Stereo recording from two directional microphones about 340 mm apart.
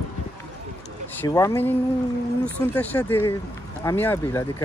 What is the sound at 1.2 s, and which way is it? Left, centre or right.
Speech, centre.